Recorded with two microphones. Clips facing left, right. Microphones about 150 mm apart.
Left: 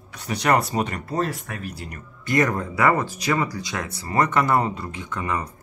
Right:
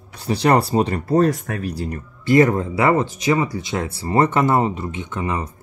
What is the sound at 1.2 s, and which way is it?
Speech, 40° right (ahead or behind).